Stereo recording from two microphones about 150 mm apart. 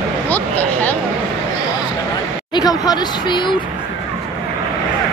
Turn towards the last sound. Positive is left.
turn(degrees=30)  # may be behind; listen again after turning